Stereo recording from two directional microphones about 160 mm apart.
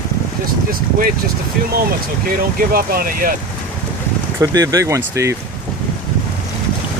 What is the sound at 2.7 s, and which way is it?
Speech, 65° right (ahead or behind).